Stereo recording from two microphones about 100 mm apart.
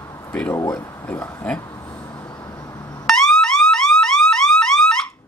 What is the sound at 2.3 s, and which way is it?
Vehicle, 40° left (ahead or behind).